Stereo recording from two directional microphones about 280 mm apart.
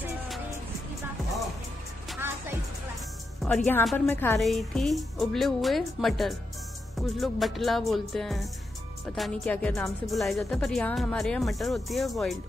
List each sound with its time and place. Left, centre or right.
2.0 s music: centre
3.4 s speech: centre